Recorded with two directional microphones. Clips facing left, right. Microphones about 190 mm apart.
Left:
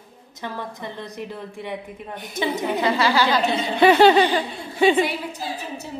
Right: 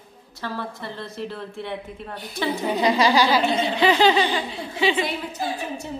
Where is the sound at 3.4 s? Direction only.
55° left (ahead or behind).